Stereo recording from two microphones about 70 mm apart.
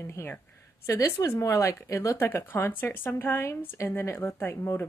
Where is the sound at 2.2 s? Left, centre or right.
Left.